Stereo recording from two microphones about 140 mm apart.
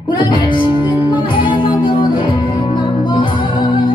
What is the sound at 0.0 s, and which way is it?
Music, 35° left (ahead or behind).